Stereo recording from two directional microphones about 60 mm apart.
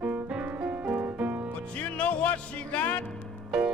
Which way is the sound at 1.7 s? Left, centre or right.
Left.